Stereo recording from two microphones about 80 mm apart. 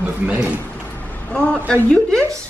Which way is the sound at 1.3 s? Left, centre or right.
Centre.